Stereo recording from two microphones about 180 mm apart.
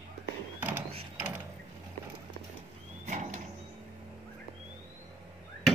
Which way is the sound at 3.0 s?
45° right (ahead or behind).